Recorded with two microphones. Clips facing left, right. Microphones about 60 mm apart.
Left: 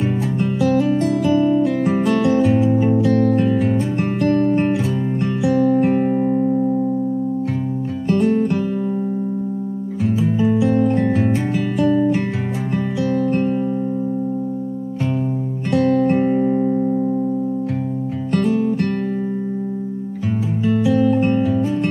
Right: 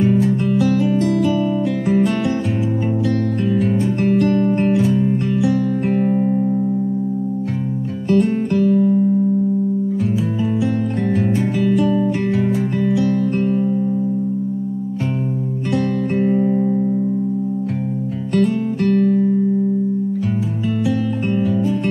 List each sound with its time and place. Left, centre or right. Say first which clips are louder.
0.0 s music: right 4 dB; centre
5.4 s music: left 7 dB; left
8.1 s music: right 1 dB; centre
8.5 s music: right 7 dB; centre
10.4 s music: left 6 dB; centre
15.7 s music: left 4 dB; centre
18.3 s music: even; centre
20.9 s music: left 4 dB; centre